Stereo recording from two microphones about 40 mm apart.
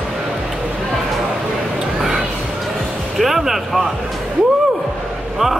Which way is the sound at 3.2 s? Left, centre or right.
Centre.